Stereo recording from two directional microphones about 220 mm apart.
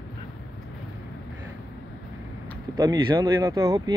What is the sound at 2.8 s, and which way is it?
Speech, 15° right (ahead or behind).